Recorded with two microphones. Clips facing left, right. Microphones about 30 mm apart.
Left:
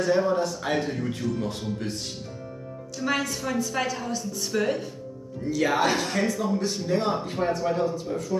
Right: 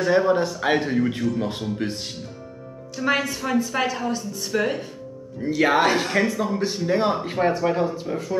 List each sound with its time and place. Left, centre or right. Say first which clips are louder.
0.0 s a man's voice: right 4 dB; right
5.4 s a man's voice: right 5 dB; right
5.8 s speech: right 4 dB; centre